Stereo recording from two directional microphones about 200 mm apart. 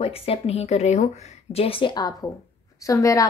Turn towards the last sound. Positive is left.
turn(degrees=15)  # may be behind; listen again after turning